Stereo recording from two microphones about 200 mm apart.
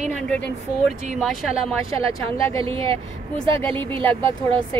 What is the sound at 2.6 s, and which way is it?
Speech, 25° right (ahead or behind).